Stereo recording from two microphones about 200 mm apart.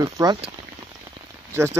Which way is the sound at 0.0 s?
25° right (ahead or behind).